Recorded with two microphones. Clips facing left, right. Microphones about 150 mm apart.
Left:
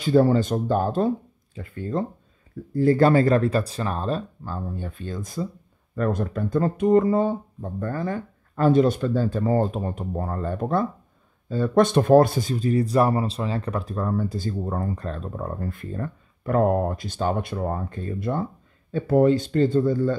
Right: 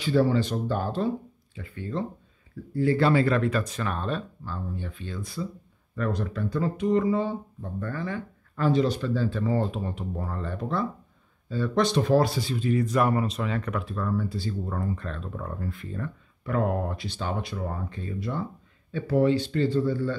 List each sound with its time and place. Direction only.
0.0 s speech: 45° left (ahead or behind)